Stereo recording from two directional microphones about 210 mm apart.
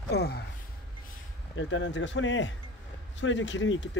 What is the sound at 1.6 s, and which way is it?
Speech, 60° left (ahead or behind).